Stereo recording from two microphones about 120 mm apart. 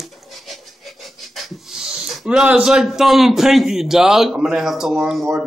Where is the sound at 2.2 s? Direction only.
5° right (ahead or behind).